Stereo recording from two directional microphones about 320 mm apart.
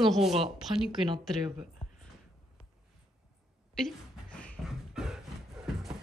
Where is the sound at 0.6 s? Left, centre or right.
Centre.